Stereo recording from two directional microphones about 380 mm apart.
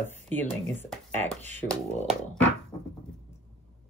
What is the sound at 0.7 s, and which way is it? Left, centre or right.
Speech, centre.